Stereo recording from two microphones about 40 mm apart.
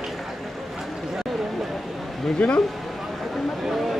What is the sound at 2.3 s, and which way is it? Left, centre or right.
Speech, left.